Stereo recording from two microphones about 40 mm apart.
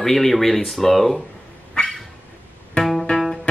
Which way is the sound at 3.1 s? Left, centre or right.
Centre.